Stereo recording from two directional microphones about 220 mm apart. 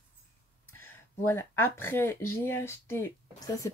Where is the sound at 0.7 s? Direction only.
10° left (ahead or behind).